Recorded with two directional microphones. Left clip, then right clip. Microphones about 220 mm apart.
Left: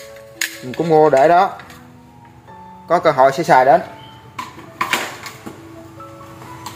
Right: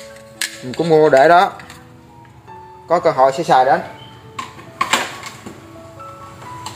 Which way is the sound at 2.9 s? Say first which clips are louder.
Left 1 dB; 15° left (ahead or behind).